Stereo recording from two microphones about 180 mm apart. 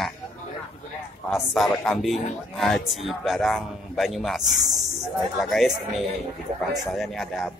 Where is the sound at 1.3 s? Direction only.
Centre (ahead or behind).